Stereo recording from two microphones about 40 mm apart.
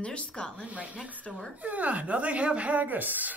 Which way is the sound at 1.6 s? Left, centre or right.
Right.